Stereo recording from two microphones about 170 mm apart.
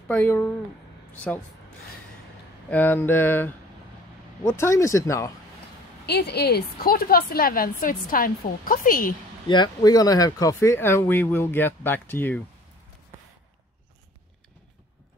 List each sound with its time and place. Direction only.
0.1 s speech: 10° left (ahead or behind)
2.7 s speech: 10° left (ahead or behind)
6.0 s a woman's voice: 75° left (ahead or behind); by 9.1 s 55° left (ahead or behind)
9.5 s speech: 25° left (ahead or behind)